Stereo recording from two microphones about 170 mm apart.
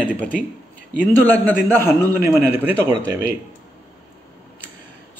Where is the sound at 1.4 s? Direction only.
15° left (ahead or behind).